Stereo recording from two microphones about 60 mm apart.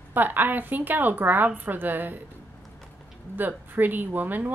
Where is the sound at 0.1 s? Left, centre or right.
Right.